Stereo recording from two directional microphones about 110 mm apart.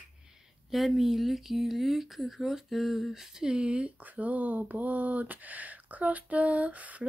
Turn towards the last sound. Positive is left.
turn(degrees=-15)  # may be behind; listen again after turning